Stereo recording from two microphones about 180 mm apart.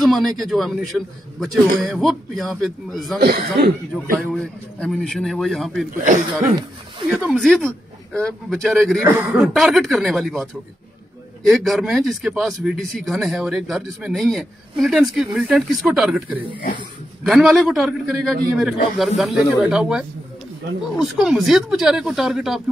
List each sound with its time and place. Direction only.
0.0 s speech: centre (ahead or behind)
3.2 s speech: 60° right (ahead or behind)
4.4 s speech: 5° left (ahead or behind)
5.9 s speech: 45° right (ahead or behind)
7.2 s speech: centre (ahead or behind)